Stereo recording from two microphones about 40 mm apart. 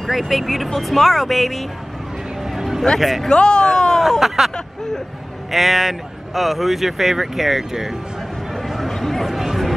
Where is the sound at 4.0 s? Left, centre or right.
Centre.